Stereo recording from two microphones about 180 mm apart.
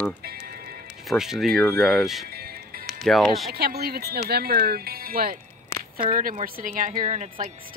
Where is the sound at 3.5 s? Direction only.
60° right (ahead or behind).